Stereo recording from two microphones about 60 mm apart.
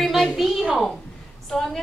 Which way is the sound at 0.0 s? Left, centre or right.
Centre.